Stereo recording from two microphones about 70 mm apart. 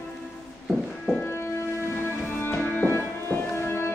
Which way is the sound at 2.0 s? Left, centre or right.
Left.